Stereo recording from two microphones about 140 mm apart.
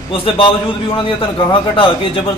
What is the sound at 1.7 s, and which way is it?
Speech, 40° left (ahead or behind).